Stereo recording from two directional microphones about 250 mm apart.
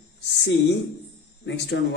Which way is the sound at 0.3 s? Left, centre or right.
Left.